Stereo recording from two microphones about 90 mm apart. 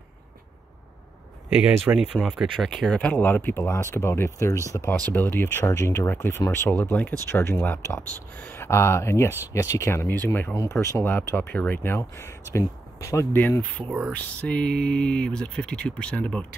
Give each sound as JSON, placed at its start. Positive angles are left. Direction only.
{"t": 1.5, "sound": "speech", "side_deg": -10}
{"t": 2.1, "sound": "speech", "side_deg": 5}
{"t": 5.1, "sound": "speech", "side_deg": 20}
{"t": 5.7, "sound": "speech", "side_deg": 35}
{"t": 6.7, "sound": "speech", "side_deg": 15}
{"t": 7.2, "sound": "speech", "side_deg": 30}
{"t": 10.7, "sound": "speech", "side_deg": 30}
{"t": 13.4, "sound": "speech", "side_deg": 20}
{"t": 13.8, "sound": "speech", "side_deg": -10}
{"t": 14.1, "sound": "speech", "side_deg": 15}